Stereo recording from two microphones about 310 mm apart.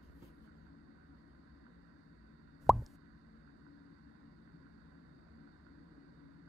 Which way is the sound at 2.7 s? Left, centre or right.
Centre.